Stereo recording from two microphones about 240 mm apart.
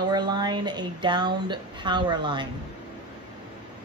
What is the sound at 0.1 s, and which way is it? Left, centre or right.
A woman's voice, centre.